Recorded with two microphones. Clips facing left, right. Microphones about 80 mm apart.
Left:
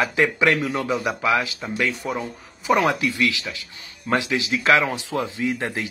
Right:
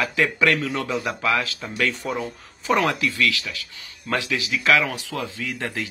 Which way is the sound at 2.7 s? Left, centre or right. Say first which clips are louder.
Left 2 dB; centre.